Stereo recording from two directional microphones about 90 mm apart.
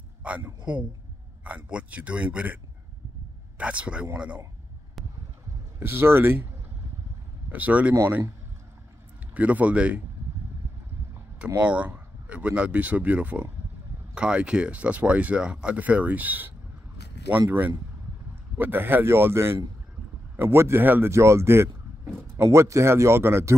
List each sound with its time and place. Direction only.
0.2 s speech: 15° right (ahead or behind)
5.8 s speech: 25° right (ahead or behind)
7.5 s speech: 15° right (ahead or behind)
9.3 s speech: 15° right (ahead or behind)
11.3 s speech: 15° right (ahead or behind); by 23.5 s 30° right (ahead or behind)